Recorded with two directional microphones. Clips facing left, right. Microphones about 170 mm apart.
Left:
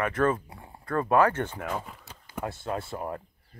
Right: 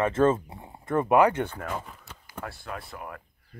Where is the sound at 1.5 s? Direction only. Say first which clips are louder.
Left 1 dB; 5° left (ahead or behind).